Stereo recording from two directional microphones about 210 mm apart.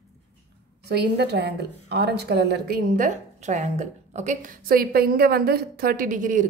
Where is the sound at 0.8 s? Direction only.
50° right (ahead or behind).